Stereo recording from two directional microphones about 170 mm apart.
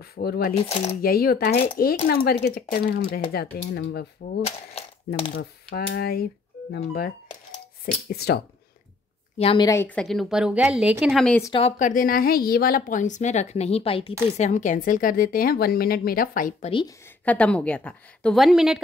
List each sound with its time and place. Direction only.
0.0 s a woman's voice: 65° left (ahead or behind)
0.6 s speech: 35° left (ahead or behind)
1.0 s a woman's voice: 60° left (ahead or behind)
3.3 s speech: 75° left (ahead or behind)
4.5 s speech: 35° left (ahead or behind)
5.4 s a woman's voice: 70° left (ahead or behind)
9.4 s speech: 35° left (ahead or behind)
9.7 s speech: 10° left (ahead or behind)
11.8 s a woman's voice: 55° left (ahead or behind); by 14.1 s 35° left (ahead or behind)
14.3 s a woman's voice: 45° left (ahead or behind)
17.2 s a woman's voice: 10° left (ahead or behind)